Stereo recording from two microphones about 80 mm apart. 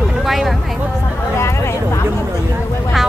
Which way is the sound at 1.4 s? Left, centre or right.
Left.